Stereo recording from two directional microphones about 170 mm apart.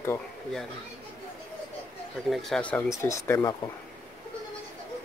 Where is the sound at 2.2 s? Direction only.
Centre (ahead or behind).